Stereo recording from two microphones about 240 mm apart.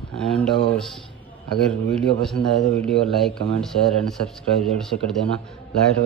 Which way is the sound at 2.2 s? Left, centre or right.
Centre.